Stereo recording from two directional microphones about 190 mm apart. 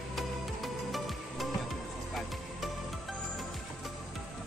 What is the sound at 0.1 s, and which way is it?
Music, centre (ahead or behind).